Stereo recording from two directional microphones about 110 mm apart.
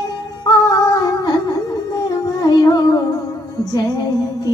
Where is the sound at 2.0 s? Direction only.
35° left (ahead or behind).